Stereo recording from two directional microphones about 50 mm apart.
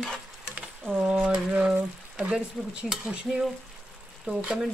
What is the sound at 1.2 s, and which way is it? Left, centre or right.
Speech, right.